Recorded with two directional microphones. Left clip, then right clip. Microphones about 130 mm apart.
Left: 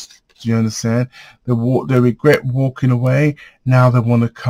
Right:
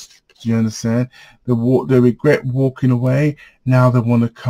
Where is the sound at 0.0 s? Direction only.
30° left (ahead or behind).